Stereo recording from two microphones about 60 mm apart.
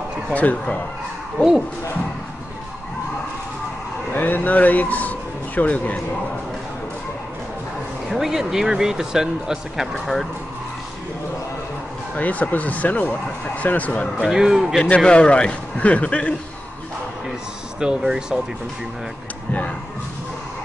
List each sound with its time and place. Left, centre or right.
0.3 s speech: left
4.1 s speech: left
8.1 s speech: centre
12.2 s speech: left
14.3 s speech: centre
15.0 s speech: centre
17.7 s speech: centre